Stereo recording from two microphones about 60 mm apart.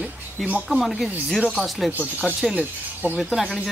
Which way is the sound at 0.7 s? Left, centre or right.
Centre.